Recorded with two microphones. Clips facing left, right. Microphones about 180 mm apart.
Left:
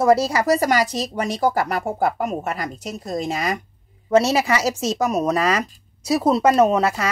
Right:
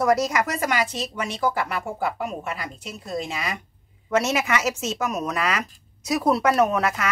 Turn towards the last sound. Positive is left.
turn(degrees=30)  # may be behind; listen again after turning